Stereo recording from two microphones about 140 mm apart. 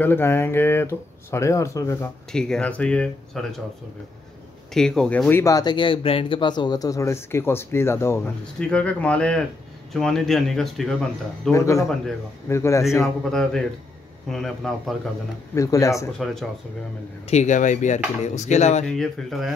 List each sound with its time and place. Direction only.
0.0 s speech: 15° left (ahead or behind)
2.3 s speech: 5° left (ahead or behind)
4.7 s speech: 5° left (ahead or behind)
5.4 s speech: 25° left (ahead or behind)
8.5 s speech: 5° left (ahead or behind)
11.5 s speech: 20° left (ahead or behind)
13.0 s speech: 5° left (ahead or behind)
15.5 s speech: 25° left (ahead or behind)
16.1 s speech: centre (ahead or behind)
17.3 s speech: 55° left (ahead or behind)
18.9 s speech: 5° left (ahead or behind)